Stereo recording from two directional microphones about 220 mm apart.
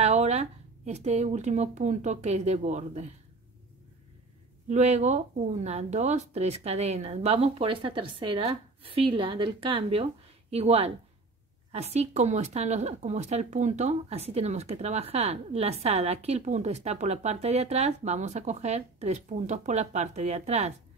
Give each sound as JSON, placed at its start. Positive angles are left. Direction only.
{"t": 0.0, "sound": "speech", "side_deg": -30}
{"t": 4.6, "sound": "speech", "side_deg": -30}